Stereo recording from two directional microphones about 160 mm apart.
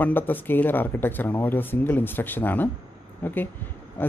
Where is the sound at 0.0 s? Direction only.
10° left (ahead or behind).